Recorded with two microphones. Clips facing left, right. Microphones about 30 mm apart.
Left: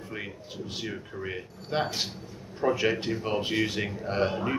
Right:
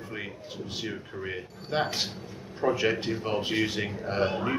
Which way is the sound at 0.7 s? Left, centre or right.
Centre.